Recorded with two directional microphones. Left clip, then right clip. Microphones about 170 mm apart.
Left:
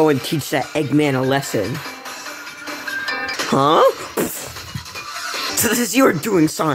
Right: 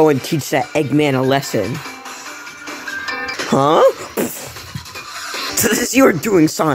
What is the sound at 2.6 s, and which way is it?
Music, 5° left (ahead or behind).